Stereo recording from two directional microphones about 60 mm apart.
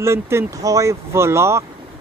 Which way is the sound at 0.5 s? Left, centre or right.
Right.